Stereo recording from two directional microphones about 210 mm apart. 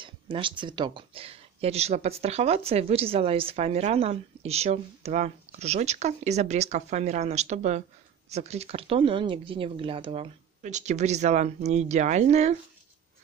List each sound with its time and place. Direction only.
0.0 s speech: 25° right (ahead or behind)